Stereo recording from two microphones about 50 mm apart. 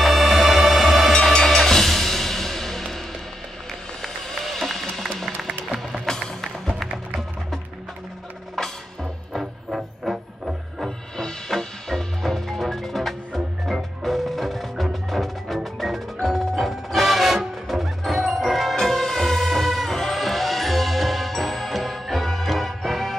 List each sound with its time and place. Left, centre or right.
0.0 s music: centre
4.0 s music: centre
8.6 s music: centre
11.1 s music: centre